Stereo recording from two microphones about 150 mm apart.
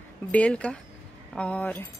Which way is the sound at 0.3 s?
10° left (ahead or behind).